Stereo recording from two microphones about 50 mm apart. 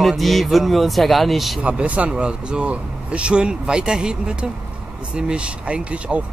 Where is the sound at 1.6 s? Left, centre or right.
Right.